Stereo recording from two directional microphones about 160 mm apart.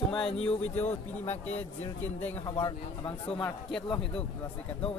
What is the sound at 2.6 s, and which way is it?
Speech, 35° left (ahead or behind).